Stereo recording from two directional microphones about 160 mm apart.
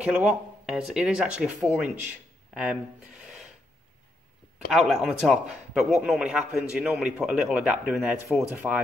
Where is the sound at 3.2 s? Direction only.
5° right (ahead or behind).